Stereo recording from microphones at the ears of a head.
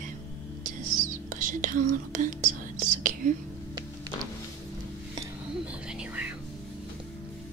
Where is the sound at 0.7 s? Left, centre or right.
Right.